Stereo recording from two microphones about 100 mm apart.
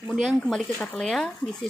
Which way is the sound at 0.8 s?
10° left (ahead or behind).